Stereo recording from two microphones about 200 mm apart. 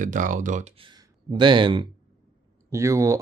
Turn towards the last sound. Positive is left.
turn(degrees=-15)  # may be behind; listen again after turning